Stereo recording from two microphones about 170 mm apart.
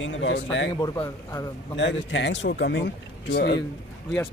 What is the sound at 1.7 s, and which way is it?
A man's voice, 90° left.